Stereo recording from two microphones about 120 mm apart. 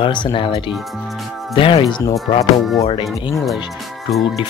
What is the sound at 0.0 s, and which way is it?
Speech, 45° left (ahead or behind).